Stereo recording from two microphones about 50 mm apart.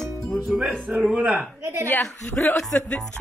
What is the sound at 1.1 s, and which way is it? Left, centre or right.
Speech, right.